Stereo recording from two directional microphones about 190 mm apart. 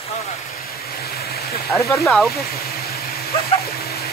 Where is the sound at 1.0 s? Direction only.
55° left (ahead or behind).